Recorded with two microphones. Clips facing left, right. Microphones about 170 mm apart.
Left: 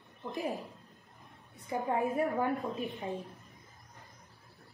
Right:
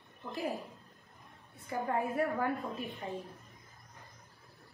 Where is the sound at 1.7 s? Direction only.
20° left (ahead or behind).